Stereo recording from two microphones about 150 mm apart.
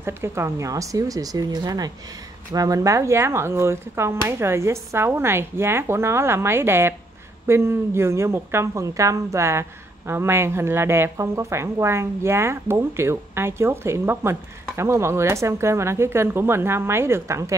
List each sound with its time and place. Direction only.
0.0 s speech: 15° right (ahead or behind)